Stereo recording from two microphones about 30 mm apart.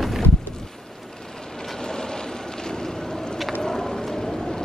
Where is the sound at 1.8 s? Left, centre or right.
Left.